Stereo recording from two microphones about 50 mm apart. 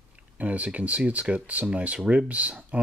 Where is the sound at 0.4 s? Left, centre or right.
Right.